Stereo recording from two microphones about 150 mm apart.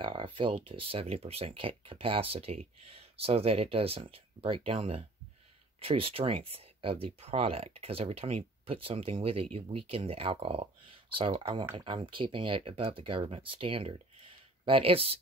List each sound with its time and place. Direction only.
0.0 s speech: 35° right (ahead or behind)